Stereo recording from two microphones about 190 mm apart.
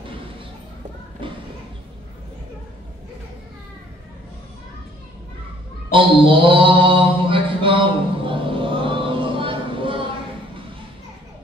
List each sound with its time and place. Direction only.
1.2 s music: 25° right (ahead or behind)
5.9 s mantra: 25° right (ahead or behind)